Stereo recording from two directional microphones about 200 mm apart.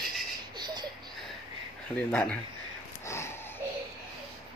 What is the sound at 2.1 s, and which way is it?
Speech, 5° left (ahead or behind).